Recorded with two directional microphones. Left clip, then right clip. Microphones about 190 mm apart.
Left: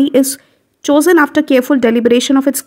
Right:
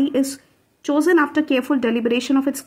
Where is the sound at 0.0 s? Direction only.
40° left (ahead or behind).